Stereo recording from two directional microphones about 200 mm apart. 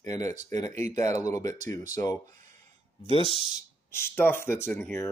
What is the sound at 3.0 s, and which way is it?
Speech, 30° left (ahead or behind).